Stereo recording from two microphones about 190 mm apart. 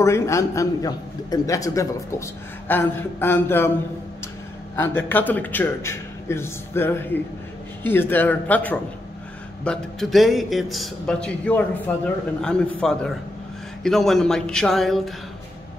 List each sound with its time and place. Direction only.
0.0 s a man's voice: 15° left (ahead or behind)
4.7 s a man's voice: 10° left (ahead or behind)